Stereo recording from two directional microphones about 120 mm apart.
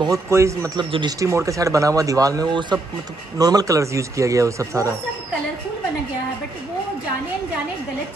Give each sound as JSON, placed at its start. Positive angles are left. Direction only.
{"t": 0.1, "sound": "speech", "side_deg": -25}
{"t": 0.7, "sound": "speech", "side_deg": -40}
{"t": 1.2, "sound": "speech", "side_deg": -25}